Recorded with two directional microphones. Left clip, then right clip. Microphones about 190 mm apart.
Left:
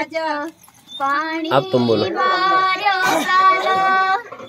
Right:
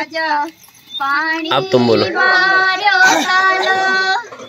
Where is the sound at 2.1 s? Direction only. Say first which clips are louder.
Right 4 dB; 30° left (ahead or behind).